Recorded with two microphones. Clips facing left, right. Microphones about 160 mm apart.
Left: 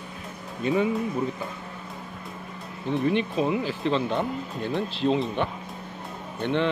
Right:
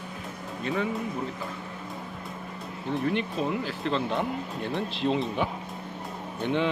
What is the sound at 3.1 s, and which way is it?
Speech, 5° left (ahead or behind).